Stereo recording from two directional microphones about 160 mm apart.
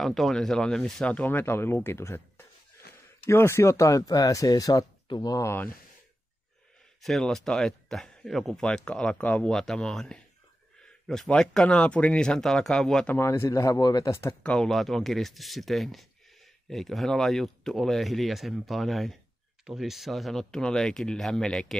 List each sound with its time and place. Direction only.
0.0 s speech: centre (ahead or behind)
7.0 s speech: centre (ahead or behind)